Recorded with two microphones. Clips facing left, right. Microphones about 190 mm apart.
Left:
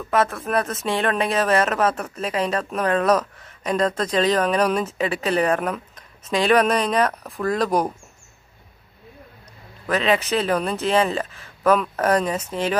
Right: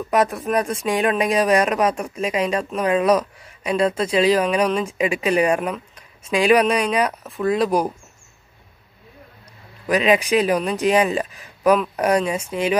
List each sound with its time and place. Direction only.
0.0 s speech: 15° right (ahead or behind)
9.8 s speech: 15° right (ahead or behind)